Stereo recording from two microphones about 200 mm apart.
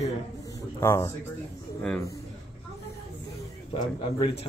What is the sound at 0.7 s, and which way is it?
Speech, 15° left (ahead or behind).